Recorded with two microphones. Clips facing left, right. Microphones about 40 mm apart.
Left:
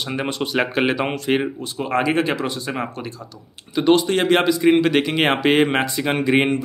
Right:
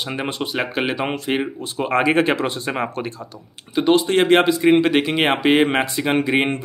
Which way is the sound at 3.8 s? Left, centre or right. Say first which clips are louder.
Right 1 dB; centre.